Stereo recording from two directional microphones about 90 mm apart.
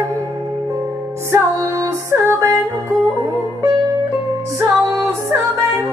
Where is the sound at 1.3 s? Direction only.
35° right (ahead or behind).